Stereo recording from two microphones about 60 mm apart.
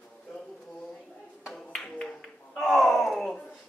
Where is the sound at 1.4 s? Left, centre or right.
Centre.